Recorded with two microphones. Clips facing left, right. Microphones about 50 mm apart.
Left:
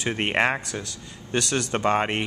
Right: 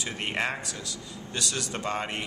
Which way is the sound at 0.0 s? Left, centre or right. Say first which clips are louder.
Left 7 dB; left.